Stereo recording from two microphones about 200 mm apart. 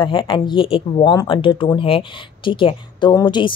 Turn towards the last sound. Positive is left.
turn(degrees=20)  # may be behind; listen again after turning